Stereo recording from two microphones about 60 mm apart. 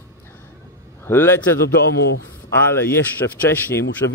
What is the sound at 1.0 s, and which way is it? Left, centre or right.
Speech, left.